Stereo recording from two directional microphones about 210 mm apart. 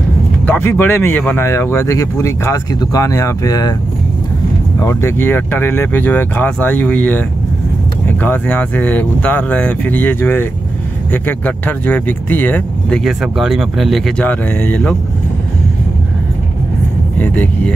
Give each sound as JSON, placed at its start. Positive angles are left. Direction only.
{"t": 0.5, "sound": "speech", "side_deg": 10}
{"t": 4.7, "sound": "speech", "side_deg": 10}
{"t": 17.2, "sound": "speech", "side_deg": 10}